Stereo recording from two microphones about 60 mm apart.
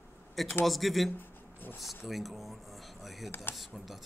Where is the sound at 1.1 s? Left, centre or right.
Left.